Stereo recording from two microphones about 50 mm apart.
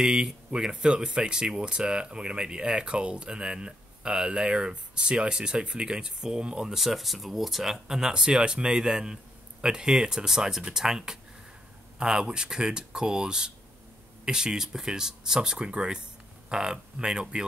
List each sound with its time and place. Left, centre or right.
0.0 s speech: centre
6.8 s speech: centre